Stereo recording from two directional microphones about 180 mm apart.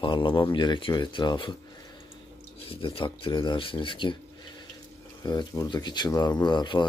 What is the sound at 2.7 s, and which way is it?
Speech, 30° left (ahead or behind).